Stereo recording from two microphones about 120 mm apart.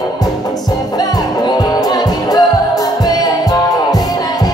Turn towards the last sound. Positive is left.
turn(degrees=35)  # may be behind; listen again after turning